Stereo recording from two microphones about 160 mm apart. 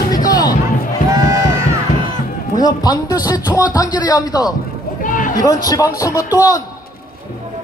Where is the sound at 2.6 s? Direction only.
25° left (ahead or behind).